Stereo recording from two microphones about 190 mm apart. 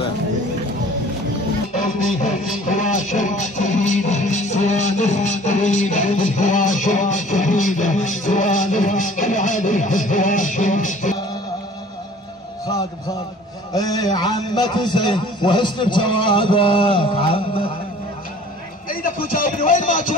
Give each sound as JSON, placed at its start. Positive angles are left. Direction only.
{"t": 3.0, "sound": "music", "side_deg": 40}
{"t": 13.7, "sound": "a man's voice", "side_deg": 20}
{"t": 18.9, "sound": "a sound", "side_deg": 50}